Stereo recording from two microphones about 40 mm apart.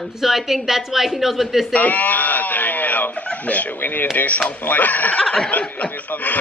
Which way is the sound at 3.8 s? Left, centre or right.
Left.